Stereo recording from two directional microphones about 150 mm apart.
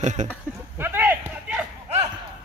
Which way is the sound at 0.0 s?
55° right (ahead or behind).